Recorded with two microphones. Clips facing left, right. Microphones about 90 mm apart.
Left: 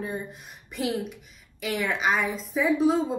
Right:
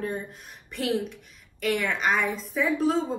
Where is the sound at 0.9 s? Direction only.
15° left (ahead or behind).